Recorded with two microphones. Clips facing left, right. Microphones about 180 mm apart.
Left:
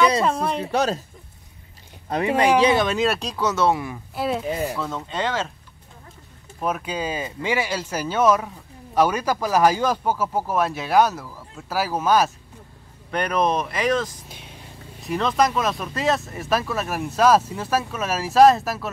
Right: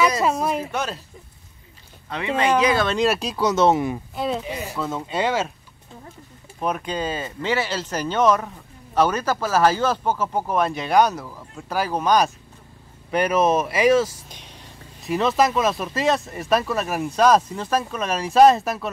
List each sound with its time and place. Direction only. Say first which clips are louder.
0.2 s speech: right 1 dB; 5° right (ahead or behind)
0.7 s speech: left 5 dB; 40° left (ahead or behind)
2.0 s speech: left 3 dB; 40° left (ahead or behind)
2.6 s speech: left 2 dB; 20° left (ahead or behind)
2.9 s speech: right 1 dB; centre (ahead or behind)
3.3 s speech: right 4 dB; 20° right (ahead or behind)
4.1 s a woman's voice: left 1 dB; 5° left (ahead or behind)
6.6 s a woman's voice: right 1 dB; 5° left (ahead or behind)
14.3 s vehicle: left 2 dB; 5° left (ahead or behind)
15.0 s speech: right 1 dB; 5° right (ahead or behind)